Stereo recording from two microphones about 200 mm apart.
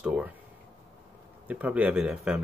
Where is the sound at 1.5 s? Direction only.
5° right (ahead or behind).